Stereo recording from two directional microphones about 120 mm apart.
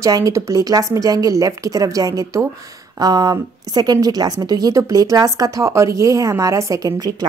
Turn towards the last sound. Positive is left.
turn(degrees=-35)  # may be behind; listen again after turning